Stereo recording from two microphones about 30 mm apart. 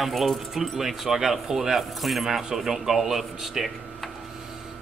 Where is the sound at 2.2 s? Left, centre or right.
Centre.